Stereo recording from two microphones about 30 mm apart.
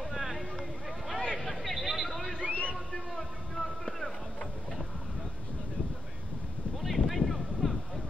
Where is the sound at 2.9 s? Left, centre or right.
Centre.